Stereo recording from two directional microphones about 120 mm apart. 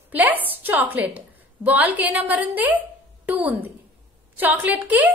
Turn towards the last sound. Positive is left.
turn(degrees=-15)  # may be behind; listen again after turning